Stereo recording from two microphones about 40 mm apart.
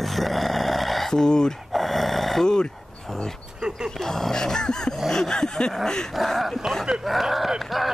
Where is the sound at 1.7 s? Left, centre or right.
Centre.